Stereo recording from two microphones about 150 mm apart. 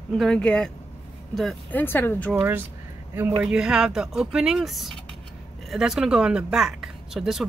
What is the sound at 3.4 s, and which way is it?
Speech, 5° right (ahead or behind).